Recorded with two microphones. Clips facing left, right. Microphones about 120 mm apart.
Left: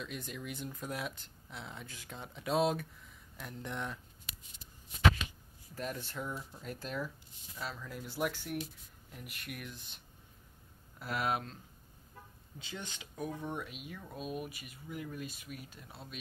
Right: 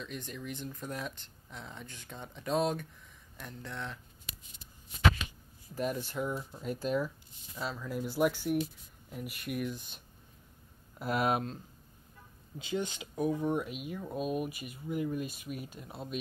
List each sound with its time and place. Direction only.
0.0 s speech: 5° left (ahead or behind)
3.6 s speech: 15° left (ahead or behind)
5.8 s speech: 10° right (ahead or behind)
11.0 s speech: 20° right (ahead or behind)
12.5 s speech: 15° right (ahead or behind)